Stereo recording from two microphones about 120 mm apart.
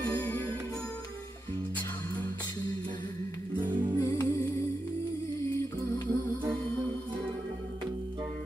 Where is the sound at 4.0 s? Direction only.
20° left (ahead or behind).